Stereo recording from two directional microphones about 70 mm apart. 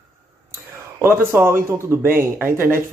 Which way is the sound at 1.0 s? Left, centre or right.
Right.